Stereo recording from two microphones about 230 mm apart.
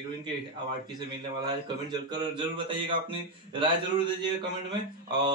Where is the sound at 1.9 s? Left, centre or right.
Centre.